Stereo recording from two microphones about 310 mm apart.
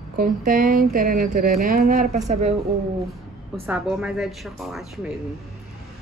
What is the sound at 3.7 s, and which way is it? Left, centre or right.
A woman's voice, centre.